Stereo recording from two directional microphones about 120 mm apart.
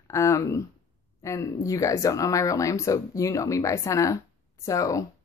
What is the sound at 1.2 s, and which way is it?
Speech, 25° left (ahead or behind).